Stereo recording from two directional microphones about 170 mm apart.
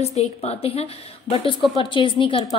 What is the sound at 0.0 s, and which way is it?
A woman's voice, 40° left (ahead or behind).